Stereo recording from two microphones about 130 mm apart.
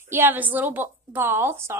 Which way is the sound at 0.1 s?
15° right (ahead or behind).